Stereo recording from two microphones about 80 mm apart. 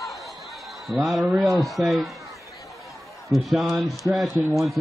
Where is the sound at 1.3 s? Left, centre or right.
Centre.